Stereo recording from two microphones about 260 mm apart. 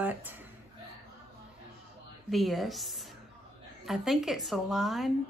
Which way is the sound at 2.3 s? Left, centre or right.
Centre.